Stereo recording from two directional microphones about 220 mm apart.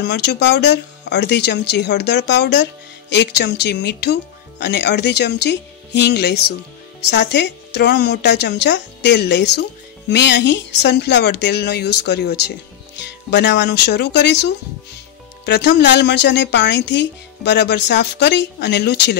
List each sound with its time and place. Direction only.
0.0 s speech: 50° left (ahead or behind)